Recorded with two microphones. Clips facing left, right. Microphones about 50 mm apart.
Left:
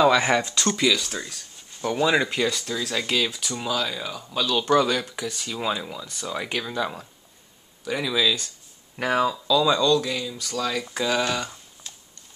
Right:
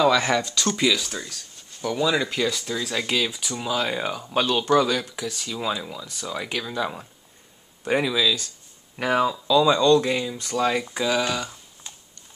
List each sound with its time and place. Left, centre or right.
0.0 s speech: centre
0.7 s speech: centre
1.8 s speech: centre
2.4 s speech: centre
3.7 s speech: right
4.6 s speech: centre
8.1 s speech: centre
8.9 s speech: centre
9.6 s speech: centre
9.9 s speech: right
10.9 s speech: centre